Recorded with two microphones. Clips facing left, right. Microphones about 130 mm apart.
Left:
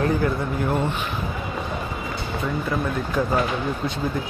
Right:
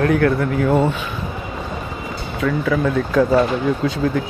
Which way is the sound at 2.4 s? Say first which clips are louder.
Right 7 dB; 90° right.